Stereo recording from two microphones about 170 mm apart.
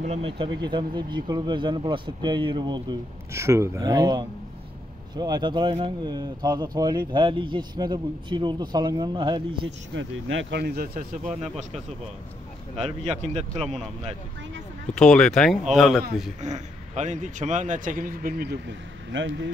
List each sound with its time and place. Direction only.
0.0 s speech: 35° right (ahead or behind)
9.9 s speech: 90° right
10.5 s speech: 70° right (ahead or behind)
12.7 s speech: 40° right (ahead or behind)
15.0 s a man's voice: 5° left (ahead or behind)
16.3 s a man's voice: 45° right (ahead or behind); by 19.5 s 90° right